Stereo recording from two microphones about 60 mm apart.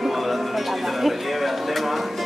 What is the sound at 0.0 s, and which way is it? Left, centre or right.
Music, centre.